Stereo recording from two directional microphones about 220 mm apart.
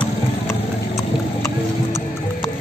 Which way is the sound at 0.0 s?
10° left (ahead or behind).